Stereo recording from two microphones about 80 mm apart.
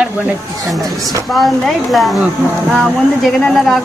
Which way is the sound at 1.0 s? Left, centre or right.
Right.